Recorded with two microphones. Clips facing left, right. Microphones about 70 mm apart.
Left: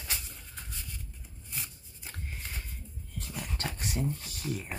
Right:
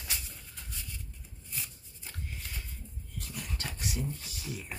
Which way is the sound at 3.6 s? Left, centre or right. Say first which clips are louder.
Left 4 dB; left.